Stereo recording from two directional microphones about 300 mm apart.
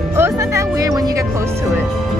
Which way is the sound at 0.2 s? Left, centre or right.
Centre.